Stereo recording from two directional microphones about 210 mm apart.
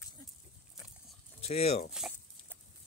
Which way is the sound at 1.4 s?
30° left (ahead or behind).